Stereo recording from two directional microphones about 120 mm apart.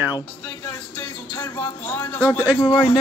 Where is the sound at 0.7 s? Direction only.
20° left (ahead or behind).